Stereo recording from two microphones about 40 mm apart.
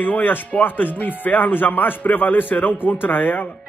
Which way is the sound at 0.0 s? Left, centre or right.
Left.